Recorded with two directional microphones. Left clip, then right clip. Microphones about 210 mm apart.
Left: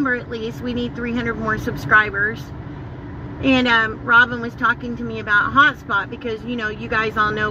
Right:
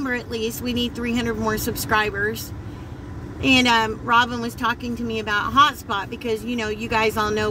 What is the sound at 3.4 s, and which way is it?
A woman's voice, 50° right (ahead or behind).